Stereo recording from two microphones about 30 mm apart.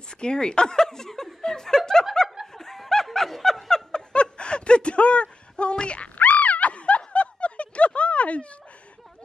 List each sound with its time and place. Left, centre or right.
0.2 s speech: left
2.2 s laughter: centre
2.5 s snicker: centre
3.9 s snicker: left
6.1 s a sound: left
7.1 s snicker: left